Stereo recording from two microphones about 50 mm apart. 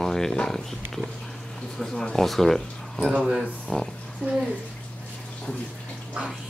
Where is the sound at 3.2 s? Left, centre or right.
Centre.